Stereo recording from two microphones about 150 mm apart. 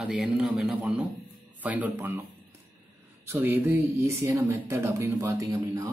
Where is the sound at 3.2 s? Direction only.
15° right (ahead or behind).